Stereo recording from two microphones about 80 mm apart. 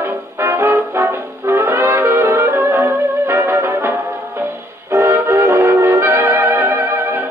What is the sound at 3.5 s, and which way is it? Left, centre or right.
Music, right.